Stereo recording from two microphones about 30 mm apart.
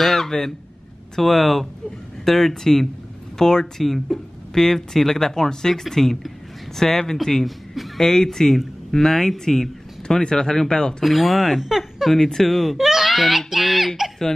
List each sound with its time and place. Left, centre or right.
0.0 s a sound: centre
1.1 s speech: centre
3.8 s speech: centre
7.4 s speech: centre
8.0 s speech: centre
11.1 s speech: centre
12.1 s speech: centre
12.4 s speech: centre
12.7 s wail: centre
13.5 s speech: centre